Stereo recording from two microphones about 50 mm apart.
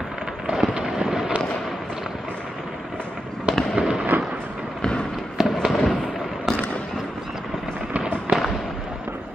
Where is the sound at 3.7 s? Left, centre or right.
Centre.